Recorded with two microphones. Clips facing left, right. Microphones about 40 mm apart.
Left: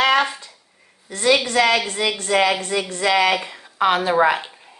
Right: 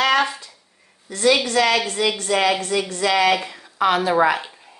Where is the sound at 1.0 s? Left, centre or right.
Left.